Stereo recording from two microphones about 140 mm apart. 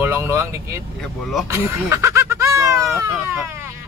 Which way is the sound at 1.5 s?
20° right (ahead or behind).